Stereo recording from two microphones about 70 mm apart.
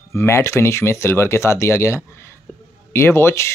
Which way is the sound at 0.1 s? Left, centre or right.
Left.